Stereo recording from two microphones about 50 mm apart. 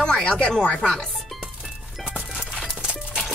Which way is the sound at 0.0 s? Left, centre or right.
Centre.